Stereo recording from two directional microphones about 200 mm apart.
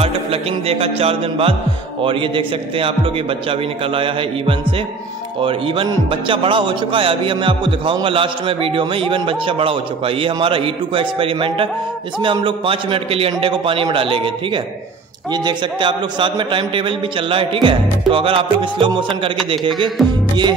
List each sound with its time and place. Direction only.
0.0 s speech: 30° right (ahead or behind)